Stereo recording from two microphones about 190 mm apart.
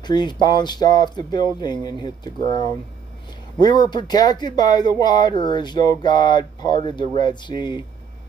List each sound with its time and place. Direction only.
0.0 s speech: 20° left (ahead or behind)